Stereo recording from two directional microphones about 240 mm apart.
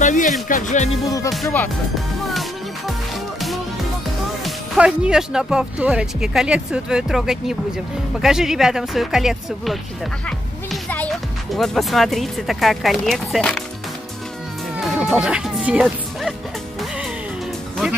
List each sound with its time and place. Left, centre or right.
0.0 s speech: left
1.3 s speech: centre
2.9 s music: centre
4.5 s speech: centre
10.2 s music: centre
11.5 s speech: centre
14.8 s music: centre